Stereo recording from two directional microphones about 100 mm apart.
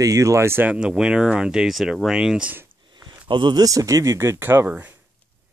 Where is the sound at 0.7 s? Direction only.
10° right (ahead or behind).